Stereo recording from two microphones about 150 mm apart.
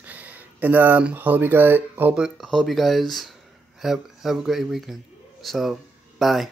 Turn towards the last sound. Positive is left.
turn(degrees=0)  # may be behind; listen again after turning